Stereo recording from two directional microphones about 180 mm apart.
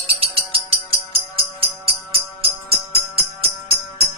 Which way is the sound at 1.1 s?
30° right (ahead or behind).